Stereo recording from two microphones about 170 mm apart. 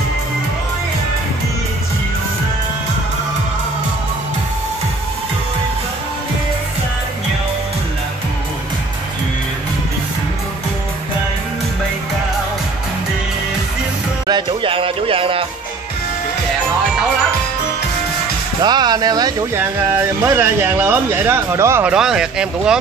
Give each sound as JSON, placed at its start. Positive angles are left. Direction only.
{"t": 14.2, "sound": "music", "side_deg": -30}
{"t": 18.6, "sound": "speech", "side_deg": -25}